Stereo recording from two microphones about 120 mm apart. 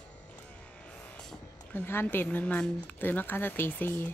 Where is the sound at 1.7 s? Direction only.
20° left (ahead or behind).